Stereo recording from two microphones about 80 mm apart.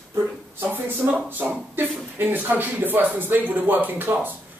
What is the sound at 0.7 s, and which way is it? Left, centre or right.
Speech, right.